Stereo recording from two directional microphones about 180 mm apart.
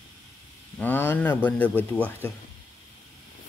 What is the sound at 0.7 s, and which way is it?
Speech, 10° left (ahead or behind).